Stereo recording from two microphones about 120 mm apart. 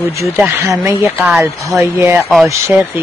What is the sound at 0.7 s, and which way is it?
Speech, 25° right (ahead or behind).